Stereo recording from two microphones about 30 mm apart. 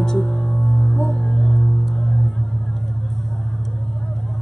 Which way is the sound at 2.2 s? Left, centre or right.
Centre.